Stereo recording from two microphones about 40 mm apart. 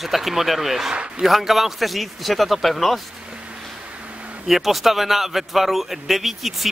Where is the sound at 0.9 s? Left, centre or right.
Right.